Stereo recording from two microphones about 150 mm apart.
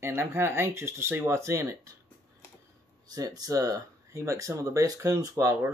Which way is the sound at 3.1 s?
25° right (ahead or behind).